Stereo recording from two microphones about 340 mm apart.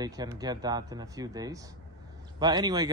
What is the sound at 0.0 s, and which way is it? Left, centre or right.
Speech, centre.